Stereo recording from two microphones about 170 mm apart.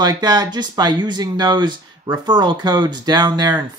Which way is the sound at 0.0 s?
25° right (ahead or behind).